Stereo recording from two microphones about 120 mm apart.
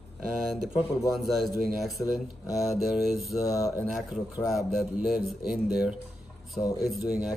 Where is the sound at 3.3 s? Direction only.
30° left (ahead or behind).